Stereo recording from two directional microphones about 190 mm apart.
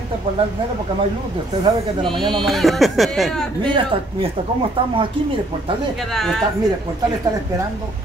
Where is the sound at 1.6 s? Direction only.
25° right (ahead or behind).